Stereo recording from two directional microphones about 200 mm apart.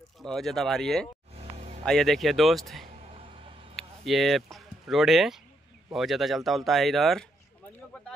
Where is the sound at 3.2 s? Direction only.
25° right (ahead or behind).